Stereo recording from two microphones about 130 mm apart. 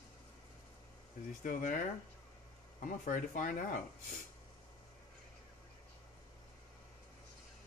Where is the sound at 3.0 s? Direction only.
90° left.